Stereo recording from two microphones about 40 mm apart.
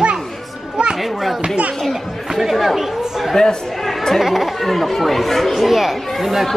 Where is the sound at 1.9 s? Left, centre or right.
Centre.